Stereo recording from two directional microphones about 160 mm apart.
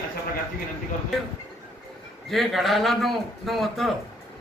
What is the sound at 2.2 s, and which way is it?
Speech, centre (ahead or behind).